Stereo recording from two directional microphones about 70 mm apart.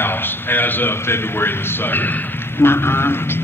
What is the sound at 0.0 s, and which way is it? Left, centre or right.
A man's voice, left.